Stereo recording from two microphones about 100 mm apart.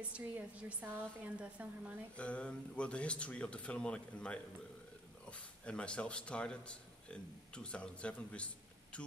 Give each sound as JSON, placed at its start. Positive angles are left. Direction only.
{"t": 0.1, "sound": "a woman's voice", "side_deg": -15}
{"t": 2.1, "sound": "a man's voice", "side_deg": 10}